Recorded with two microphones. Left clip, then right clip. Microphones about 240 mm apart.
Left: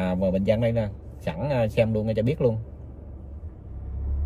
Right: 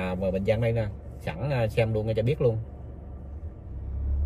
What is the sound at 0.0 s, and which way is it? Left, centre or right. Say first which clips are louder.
A man's voice: left 3 dB; centre.